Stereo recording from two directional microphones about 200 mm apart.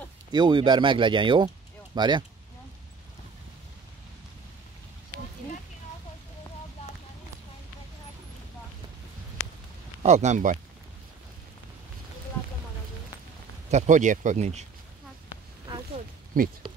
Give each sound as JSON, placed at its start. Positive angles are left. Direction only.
{"t": 0.3, "sound": "speech", "side_deg": -20}
{"t": 10.0, "sound": "speech", "side_deg": -35}
{"t": 13.7, "sound": "speech", "side_deg": -35}
{"t": 16.3, "sound": "speech", "side_deg": -45}